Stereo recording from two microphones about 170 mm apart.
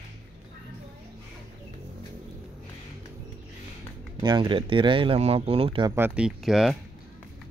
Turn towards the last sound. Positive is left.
turn(degrees=0)  # may be behind; listen again after turning